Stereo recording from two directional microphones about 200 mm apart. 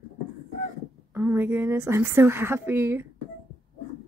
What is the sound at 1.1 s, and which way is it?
A woman's voice, 10° right (ahead or behind).